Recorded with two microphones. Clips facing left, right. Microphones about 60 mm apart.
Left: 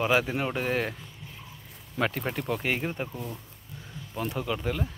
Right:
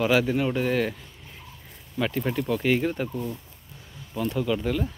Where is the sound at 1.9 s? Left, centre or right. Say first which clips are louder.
Right 2 dB; left.